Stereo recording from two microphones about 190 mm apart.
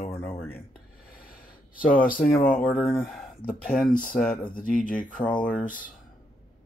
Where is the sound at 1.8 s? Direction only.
45° left (ahead or behind).